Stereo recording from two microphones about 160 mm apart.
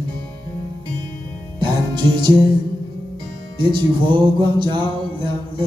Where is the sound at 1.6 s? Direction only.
30° right (ahead or behind).